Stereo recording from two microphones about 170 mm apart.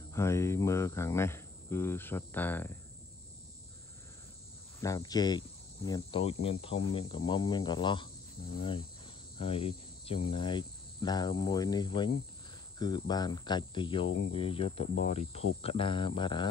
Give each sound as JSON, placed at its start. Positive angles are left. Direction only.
{"t": 0.1, "sound": "cricket", "side_deg": 15}
{"t": 4.7, "sound": "speech", "side_deg": 20}
{"t": 8.5, "sound": "cricket", "side_deg": 30}
{"t": 9.4, "sound": "speech", "side_deg": 35}
{"t": 14.1, "sound": "cricket", "side_deg": 30}